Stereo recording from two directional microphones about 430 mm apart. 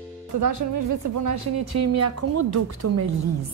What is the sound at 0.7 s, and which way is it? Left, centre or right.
A woman's voice, right.